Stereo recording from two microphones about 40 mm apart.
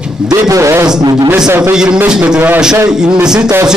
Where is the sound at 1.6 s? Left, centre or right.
Right.